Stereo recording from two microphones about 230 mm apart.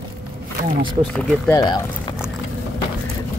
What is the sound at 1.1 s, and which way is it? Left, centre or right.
Speech, centre.